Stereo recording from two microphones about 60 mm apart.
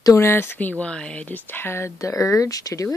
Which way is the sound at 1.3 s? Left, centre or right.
Left.